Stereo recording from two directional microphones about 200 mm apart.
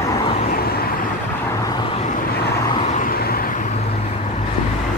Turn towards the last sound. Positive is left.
turn(degrees=50)  # may be behind; listen again after turning